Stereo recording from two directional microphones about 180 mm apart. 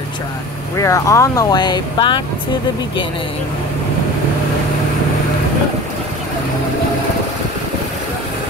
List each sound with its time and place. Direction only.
0.7 s speech: 15° left (ahead or behind)